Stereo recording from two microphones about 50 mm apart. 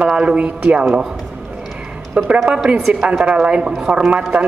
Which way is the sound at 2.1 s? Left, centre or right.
Right.